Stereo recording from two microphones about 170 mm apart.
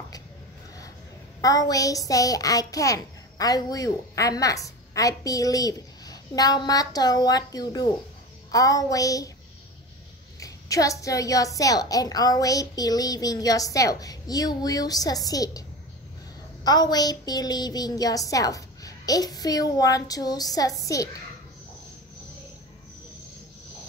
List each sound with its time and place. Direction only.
1.4 s a woman's voice: 20° left (ahead or behind)
10.4 s a woman's voice: 20° left (ahead or behind)
16.6 s a woman's voice: 25° left (ahead or behind)